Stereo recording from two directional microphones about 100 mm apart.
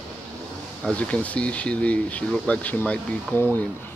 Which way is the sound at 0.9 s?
15° left (ahead or behind).